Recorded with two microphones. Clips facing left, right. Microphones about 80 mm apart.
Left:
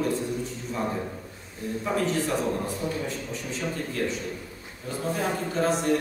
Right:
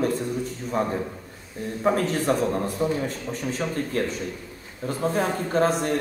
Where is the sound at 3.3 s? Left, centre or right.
Right.